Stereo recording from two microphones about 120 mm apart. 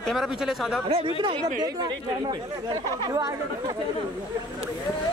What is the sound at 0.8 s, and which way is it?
Speech, 55° right (ahead or behind).